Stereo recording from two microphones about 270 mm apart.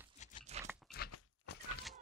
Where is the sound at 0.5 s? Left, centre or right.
Right.